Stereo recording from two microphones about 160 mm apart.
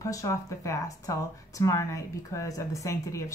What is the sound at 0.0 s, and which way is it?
Speech, 20° left (ahead or behind).